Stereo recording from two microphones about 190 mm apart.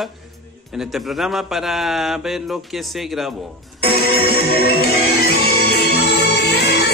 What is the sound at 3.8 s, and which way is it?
Music, 55° left (ahead or behind).